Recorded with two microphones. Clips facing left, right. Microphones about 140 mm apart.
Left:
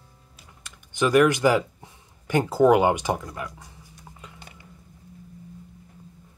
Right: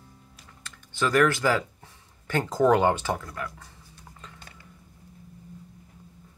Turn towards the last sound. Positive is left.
turn(degrees=15)  # may be behind; listen again after turning